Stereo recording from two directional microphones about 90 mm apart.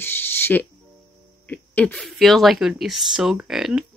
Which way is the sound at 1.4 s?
20° left (ahead or behind).